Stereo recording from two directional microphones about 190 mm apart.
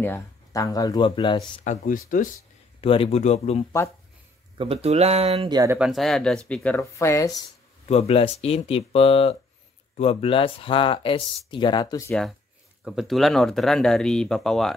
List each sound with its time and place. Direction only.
0.0 s speech: 15° left (ahead or behind)
1.7 s speech: 45° left (ahead or behind)
2.8 s speech: 30° left (ahead or behind)
4.6 s speech: 30° right (ahead or behind)
5.8 s speech: centre (ahead or behind); by 7.4 s 20° left (ahead or behind)
7.9 s speech: 30° left (ahead or behind)
12.1 s speech: 5° left (ahead or behind)